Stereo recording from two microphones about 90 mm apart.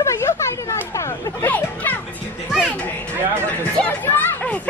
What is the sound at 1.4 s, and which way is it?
Music, 20° left (ahead or behind).